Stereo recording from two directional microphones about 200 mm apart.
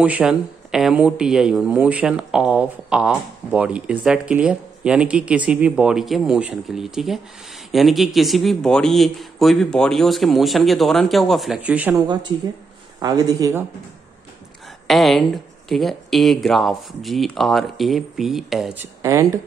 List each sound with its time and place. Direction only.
0.0 s speech: 5° right (ahead or behind)
13.0 s speech: 20° right (ahead or behind)
14.9 s speech: centre (ahead or behind)
19.0 s speech: 15° right (ahead or behind)